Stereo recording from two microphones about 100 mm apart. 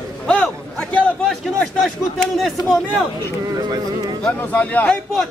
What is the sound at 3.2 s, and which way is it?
Speech, 40° right (ahead or behind).